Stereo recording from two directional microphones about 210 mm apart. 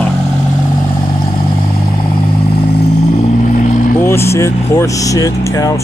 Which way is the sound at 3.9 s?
10° left (ahead or behind).